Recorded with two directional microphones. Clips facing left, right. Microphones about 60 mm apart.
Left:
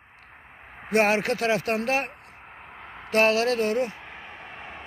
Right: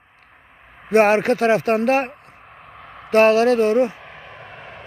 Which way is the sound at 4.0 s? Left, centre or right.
Centre.